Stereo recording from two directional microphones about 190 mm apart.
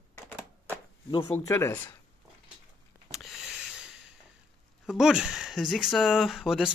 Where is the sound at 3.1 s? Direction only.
Centre (ahead or behind).